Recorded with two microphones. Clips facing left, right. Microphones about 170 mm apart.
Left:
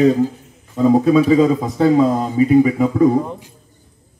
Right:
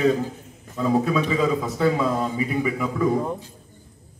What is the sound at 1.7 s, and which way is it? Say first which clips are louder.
A man's voice: left 8 dB; 35° left (ahead or behind).